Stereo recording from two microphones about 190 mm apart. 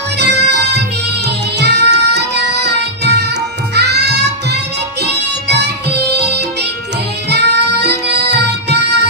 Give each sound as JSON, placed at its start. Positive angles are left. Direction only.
{"t": 0.2, "sound": "music", "side_deg": -60}